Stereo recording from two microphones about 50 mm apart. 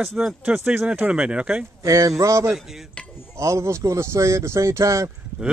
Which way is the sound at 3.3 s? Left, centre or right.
Right.